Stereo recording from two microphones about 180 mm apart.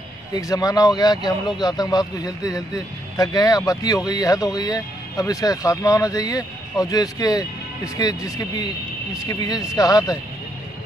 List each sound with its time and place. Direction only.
0.3 s speech: 20° left (ahead or behind)